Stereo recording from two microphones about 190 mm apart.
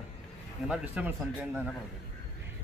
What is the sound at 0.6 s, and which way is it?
Speech, 5° right (ahead or behind).